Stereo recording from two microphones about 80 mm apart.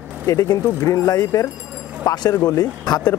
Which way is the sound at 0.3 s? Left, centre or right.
Left.